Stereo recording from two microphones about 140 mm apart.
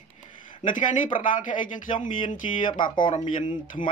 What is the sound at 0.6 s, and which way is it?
Speech, 70° left (ahead or behind).